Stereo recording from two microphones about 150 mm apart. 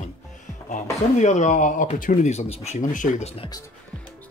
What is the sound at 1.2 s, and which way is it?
Speech, 50° left (ahead or behind).